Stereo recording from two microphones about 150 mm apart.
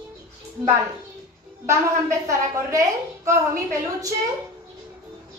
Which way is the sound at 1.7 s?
20° right (ahead or behind).